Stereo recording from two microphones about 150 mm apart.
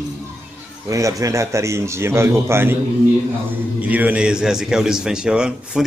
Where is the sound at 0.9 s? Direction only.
20° right (ahead or behind).